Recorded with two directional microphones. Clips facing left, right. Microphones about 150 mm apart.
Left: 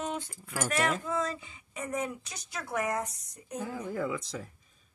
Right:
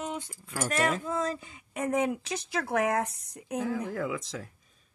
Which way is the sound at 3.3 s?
65° right (ahead or behind).